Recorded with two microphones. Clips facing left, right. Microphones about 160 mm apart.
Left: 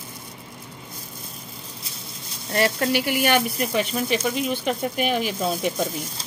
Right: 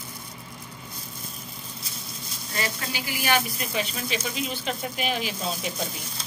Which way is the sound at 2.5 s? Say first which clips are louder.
Left 11 dB; 60° left (ahead or behind).